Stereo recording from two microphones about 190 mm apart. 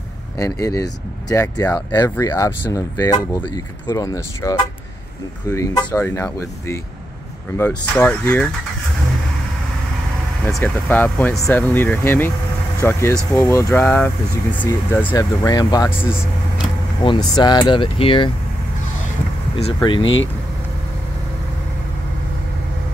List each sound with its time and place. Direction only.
0.4 s speech: 15° left (ahead or behind)
10.4 s speech: 5° left (ahead or behind)
17.0 s speech: 25° left (ahead or behind)
19.5 s speech: 25° left (ahead or behind)